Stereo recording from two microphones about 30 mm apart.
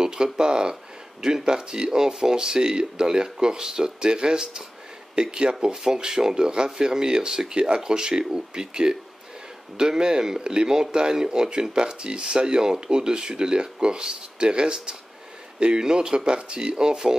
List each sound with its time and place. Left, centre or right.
0.0 s speech: right